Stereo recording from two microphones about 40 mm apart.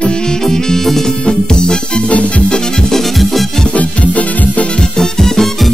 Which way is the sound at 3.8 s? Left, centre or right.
Left.